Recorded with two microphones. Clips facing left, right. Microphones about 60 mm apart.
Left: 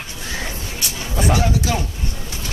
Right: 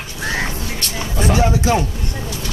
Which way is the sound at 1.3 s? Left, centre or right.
Right.